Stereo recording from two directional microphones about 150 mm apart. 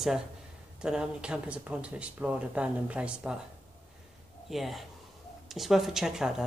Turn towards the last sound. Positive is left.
turn(degrees=-5)  # may be behind; listen again after turning